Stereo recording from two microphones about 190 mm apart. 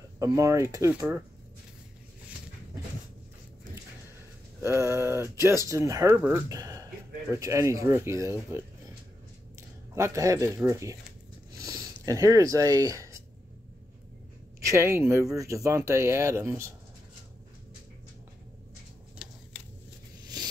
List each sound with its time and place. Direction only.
0.2 s speech: 15° right (ahead or behind)
4.6 s speech: 15° right (ahead or behind)
9.9 s speech: 15° right (ahead or behind)
11.5 s a sound: 20° right (ahead or behind)
14.6 s speech: 15° right (ahead or behind)
19.2 s a sound: 5° right (ahead or behind)